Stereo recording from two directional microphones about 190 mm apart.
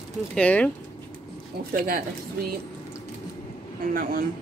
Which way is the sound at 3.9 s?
50° right (ahead or behind).